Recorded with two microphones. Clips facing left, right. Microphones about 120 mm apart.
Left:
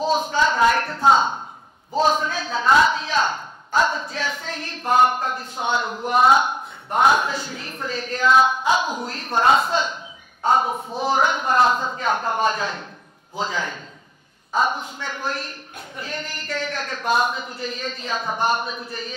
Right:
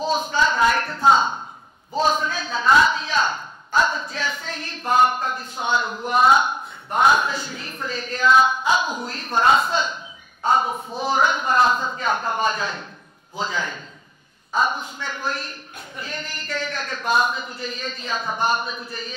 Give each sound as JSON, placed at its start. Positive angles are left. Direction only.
{"t": 0.0, "sound": "speech", "side_deg": 60}
{"t": 0.7, "sound": "a woman's voice", "side_deg": 45}
{"t": 2.0, "sound": "a man's voice", "side_deg": 60}